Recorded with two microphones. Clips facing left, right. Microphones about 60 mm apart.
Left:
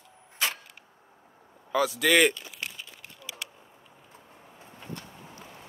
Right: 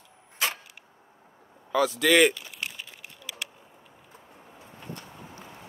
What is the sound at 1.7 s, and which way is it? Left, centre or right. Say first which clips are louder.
Speech: right 2 dB; centre.